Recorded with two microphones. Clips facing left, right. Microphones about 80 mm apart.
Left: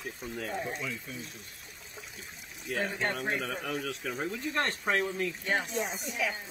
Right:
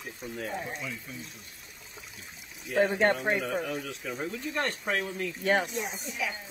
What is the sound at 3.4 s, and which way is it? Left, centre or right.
Speech, centre.